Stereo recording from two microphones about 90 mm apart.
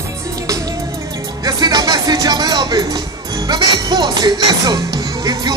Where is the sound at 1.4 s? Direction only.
50° right (ahead or behind).